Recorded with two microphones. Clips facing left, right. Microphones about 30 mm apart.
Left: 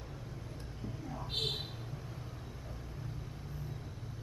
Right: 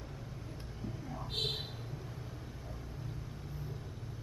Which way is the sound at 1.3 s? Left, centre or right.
Centre.